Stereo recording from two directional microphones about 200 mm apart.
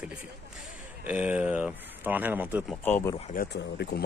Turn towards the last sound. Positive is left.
turn(degrees=55)  # may be behind; listen again after turning